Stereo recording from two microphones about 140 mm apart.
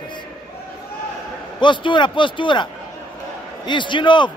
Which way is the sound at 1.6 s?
35° left (ahead or behind).